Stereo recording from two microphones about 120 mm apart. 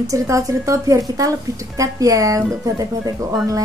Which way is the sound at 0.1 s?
25° right (ahead or behind).